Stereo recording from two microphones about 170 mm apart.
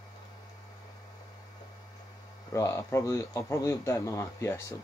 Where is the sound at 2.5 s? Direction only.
15° left (ahead or behind).